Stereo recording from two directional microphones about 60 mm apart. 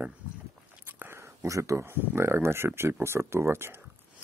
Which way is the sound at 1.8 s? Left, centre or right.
Right.